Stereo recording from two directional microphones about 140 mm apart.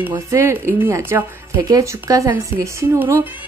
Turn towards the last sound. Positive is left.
turn(degrees=-20)  # may be behind; listen again after turning